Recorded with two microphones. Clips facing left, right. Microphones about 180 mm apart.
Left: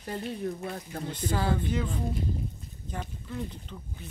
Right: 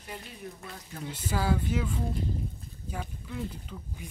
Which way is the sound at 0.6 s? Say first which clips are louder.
Left 8 dB; 55° left (ahead or behind).